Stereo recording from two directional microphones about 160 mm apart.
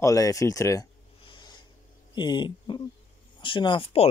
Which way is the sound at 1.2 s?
30° left (ahead or behind).